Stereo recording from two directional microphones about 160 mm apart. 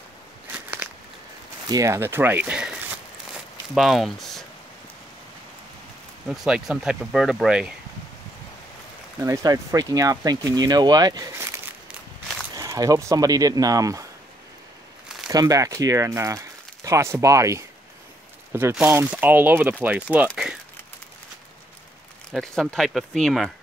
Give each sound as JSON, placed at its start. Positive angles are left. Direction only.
{"t": 0.5, "sound": "walk", "side_deg": -10}
{"t": 1.7, "sound": "speech", "side_deg": -20}
{"t": 3.3, "sound": "a sound", "side_deg": 0}
{"t": 6.2, "sound": "speech", "side_deg": -5}
{"t": 9.2, "sound": "speech", "side_deg": -20}
{"t": 15.2, "sound": "speech", "side_deg": -25}
{"t": 20.2, "sound": "a sound", "side_deg": -5}
{"t": 22.3, "sound": "speech", "side_deg": 0}